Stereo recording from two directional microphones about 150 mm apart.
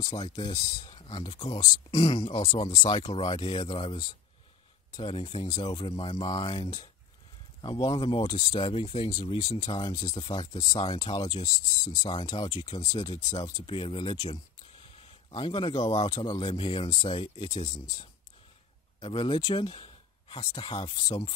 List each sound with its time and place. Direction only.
0.0 s speech: 30° left (ahead or behind)
9.4 s speech: 30° left (ahead or behind); by 17.7 s 45° left (ahead or behind)
18.9 s speech: 30° left (ahead or behind)
20.9 s speech: 25° left (ahead or behind)